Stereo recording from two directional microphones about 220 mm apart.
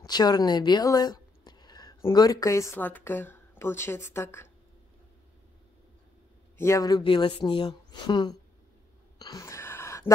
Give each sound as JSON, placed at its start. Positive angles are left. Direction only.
{"t": 0.0, "sound": "speech", "side_deg": 20}
{"t": 6.6, "sound": "a woman's voice", "side_deg": 15}
{"t": 9.2, "sound": "a sound", "side_deg": 15}